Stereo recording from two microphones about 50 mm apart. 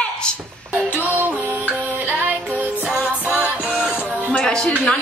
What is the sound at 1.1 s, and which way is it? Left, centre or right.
Music, right.